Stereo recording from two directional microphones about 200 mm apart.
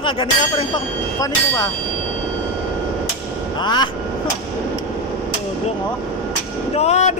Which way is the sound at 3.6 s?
20° left (ahead or behind).